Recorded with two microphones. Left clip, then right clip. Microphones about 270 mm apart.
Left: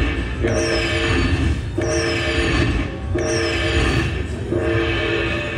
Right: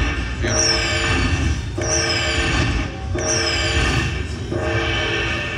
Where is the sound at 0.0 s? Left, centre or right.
Centre.